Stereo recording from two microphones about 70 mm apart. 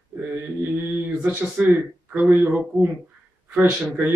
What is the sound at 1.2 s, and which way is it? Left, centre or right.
Speech, centre.